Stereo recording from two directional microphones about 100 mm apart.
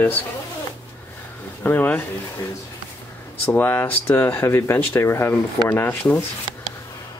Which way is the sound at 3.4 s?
20° left (ahead or behind).